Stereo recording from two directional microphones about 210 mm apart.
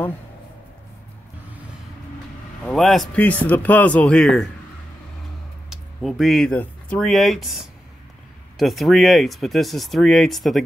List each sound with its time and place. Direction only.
2.6 s speech: centre (ahead or behind)
5.7 s speech: centre (ahead or behind)